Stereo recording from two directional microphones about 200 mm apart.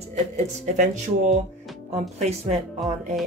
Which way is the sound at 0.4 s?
40° right (ahead or behind).